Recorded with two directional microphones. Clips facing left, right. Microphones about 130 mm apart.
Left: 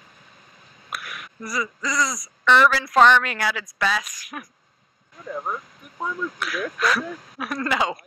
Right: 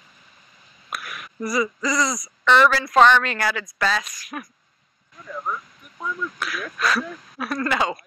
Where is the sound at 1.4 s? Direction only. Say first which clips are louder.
Right 5 dB; 10° right (ahead or behind); by 4.4 s 10° left (ahead or behind).